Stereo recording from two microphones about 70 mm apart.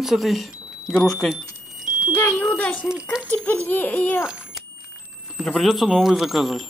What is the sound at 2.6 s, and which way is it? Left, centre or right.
A child's voice, left.